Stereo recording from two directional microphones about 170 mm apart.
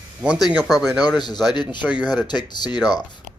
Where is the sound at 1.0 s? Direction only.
25° left (ahead or behind).